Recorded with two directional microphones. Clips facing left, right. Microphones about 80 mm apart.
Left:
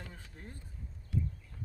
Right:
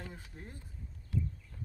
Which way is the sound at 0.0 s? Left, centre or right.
Centre.